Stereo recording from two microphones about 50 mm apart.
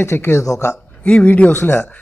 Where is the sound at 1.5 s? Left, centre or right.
Left.